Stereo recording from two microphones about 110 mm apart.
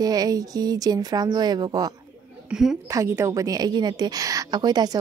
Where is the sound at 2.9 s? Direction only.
25° right (ahead or behind).